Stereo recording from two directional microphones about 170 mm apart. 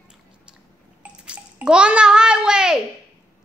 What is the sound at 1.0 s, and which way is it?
Babbling, 5° right (ahead or behind).